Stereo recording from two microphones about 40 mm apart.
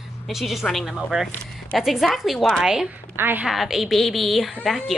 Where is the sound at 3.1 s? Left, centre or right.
Right.